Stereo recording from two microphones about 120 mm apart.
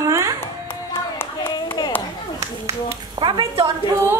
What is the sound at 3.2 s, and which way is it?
Speech, 50° right (ahead or behind).